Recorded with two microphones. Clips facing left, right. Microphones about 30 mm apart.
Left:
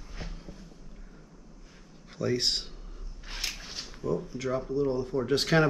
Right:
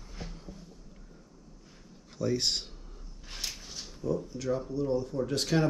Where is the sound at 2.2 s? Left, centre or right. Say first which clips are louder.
Left 1 dB; centre.